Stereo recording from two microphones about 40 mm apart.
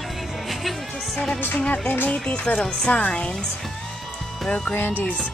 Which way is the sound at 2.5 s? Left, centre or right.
Centre.